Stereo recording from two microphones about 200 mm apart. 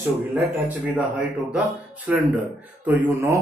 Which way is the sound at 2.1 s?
10° right (ahead or behind).